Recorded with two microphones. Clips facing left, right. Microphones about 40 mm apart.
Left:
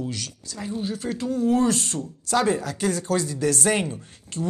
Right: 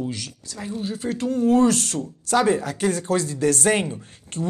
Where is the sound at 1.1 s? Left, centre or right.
Right.